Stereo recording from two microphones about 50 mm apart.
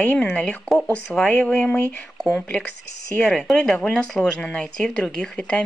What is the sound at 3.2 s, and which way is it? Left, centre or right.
A woman's voice, centre.